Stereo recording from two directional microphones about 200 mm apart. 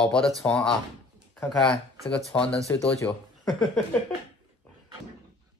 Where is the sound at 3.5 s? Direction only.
Centre (ahead or behind).